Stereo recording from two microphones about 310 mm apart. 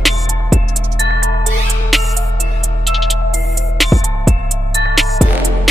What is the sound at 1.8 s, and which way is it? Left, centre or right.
Music, centre.